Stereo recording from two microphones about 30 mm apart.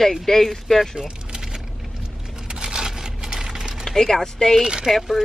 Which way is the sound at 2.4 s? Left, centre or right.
Right.